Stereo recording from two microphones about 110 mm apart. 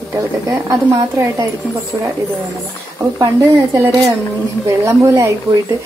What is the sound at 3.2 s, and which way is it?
A woman's voice, 30° right (ahead or behind).